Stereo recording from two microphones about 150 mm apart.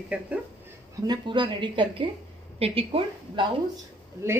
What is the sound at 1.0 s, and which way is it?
A woman's voice, 30° right (ahead or behind).